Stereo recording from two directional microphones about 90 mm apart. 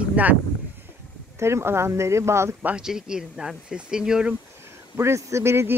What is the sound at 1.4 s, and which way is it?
A woman's voice, 30° right (ahead or behind).